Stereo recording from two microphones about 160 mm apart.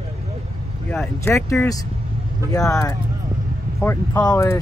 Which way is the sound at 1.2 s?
15° left (ahead or behind).